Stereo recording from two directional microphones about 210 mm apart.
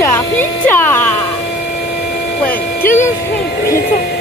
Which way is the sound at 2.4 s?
10° left (ahead or behind).